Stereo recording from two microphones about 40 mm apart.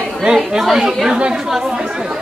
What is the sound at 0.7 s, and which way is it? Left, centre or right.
Speech, centre.